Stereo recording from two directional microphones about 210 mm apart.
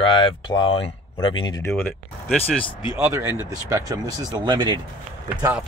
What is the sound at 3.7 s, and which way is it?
Speech, 15° right (ahead or behind).